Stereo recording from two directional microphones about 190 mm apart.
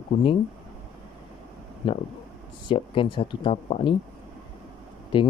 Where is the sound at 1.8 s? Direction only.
25° left (ahead or behind).